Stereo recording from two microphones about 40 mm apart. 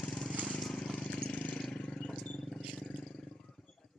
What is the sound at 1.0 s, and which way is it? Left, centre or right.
Vehicle, left.